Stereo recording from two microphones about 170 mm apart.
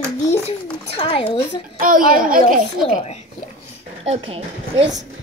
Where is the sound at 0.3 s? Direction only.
35° left (ahead or behind).